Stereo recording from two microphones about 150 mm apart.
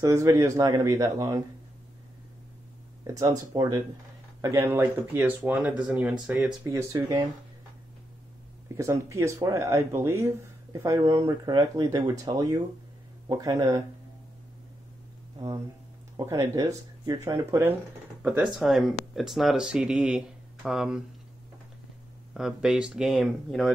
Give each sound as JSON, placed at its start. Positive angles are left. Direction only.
{"t": 0.0, "sound": "speech", "side_deg": -20}
{"t": 3.0, "sound": "speech", "side_deg": -25}
{"t": 8.7, "sound": "speech", "side_deg": -20}
{"t": 16.2, "sound": "speech", "side_deg": -25}
{"t": 18.2, "sound": "speech", "side_deg": -10}
{"t": 22.3, "sound": "speech", "side_deg": -5}